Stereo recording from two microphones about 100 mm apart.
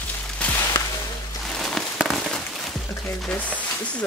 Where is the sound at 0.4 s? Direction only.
10° left (ahead or behind).